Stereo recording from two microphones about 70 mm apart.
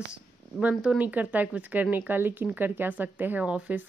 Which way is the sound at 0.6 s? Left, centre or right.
Centre.